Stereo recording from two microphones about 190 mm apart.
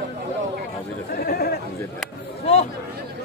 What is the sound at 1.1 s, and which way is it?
Speech, 55° left (ahead or behind).